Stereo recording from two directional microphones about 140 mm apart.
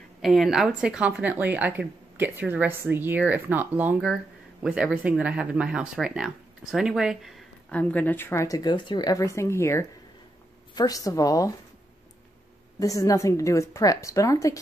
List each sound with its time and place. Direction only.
0.2 s speech: centre (ahead or behind)
7.7 s speech: 10° left (ahead or behind)
12.7 s speech: 25° left (ahead or behind)